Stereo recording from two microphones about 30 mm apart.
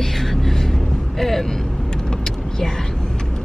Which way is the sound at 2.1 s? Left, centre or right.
Centre.